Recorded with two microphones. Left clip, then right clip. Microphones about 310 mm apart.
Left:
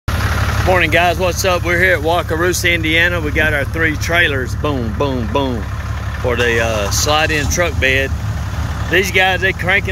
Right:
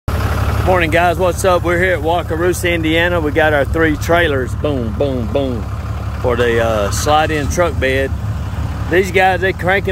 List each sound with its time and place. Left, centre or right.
0.1 s vehicle: right
0.7 s speech: centre